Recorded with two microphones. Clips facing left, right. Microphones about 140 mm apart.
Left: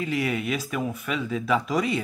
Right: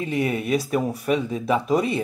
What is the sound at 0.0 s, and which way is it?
Speech, 30° right (ahead or behind).